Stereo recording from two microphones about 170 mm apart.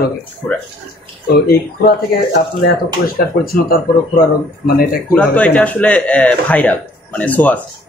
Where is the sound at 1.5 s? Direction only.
65° left (ahead or behind).